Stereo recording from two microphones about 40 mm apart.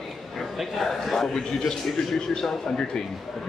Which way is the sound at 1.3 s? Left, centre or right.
Centre.